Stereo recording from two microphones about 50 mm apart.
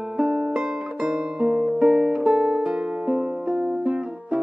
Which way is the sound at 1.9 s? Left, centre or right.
Centre.